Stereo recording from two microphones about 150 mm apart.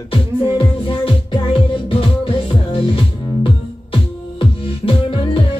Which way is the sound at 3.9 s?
35° left (ahead or behind).